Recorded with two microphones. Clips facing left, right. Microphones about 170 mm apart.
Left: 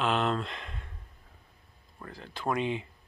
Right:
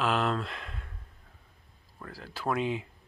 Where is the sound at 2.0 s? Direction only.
5° right (ahead or behind).